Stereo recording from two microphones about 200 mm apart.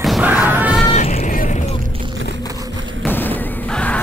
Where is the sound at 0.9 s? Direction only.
30° left (ahead or behind).